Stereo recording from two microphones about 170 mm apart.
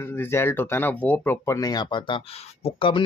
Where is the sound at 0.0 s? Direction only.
15° left (ahead or behind).